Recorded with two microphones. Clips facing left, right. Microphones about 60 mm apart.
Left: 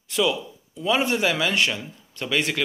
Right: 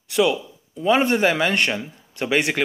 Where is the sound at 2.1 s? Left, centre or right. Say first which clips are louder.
Right 4 dB; right.